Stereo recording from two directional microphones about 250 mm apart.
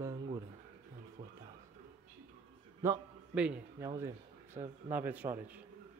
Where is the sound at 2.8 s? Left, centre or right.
Centre.